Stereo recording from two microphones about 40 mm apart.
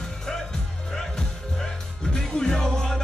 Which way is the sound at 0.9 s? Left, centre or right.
Centre.